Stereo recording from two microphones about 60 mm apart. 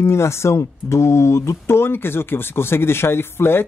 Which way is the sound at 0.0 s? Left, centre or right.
Left.